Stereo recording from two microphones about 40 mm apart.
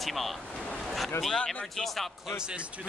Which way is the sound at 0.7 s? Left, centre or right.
Centre.